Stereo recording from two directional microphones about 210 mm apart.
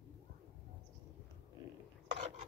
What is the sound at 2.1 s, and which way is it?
Filing, 30° right (ahead or behind).